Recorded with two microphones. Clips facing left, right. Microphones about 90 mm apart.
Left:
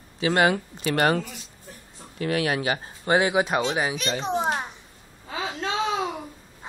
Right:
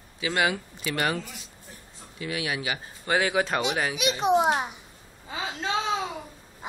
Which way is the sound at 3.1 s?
20° left (ahead or behind).